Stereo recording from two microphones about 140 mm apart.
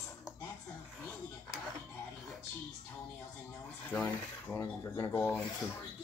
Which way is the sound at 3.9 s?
15° left (ahead or behind).